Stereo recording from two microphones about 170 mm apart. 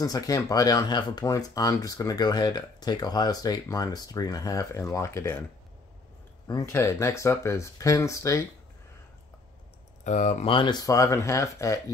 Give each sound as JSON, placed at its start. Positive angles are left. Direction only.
{"t": 0.0, "sound": "speech", "side_deg": 20}
{"t": 6.4, "sound": "speech", "side_deg": 20}
{"t": 10.0, "sound": "speech", "side_deg": 45}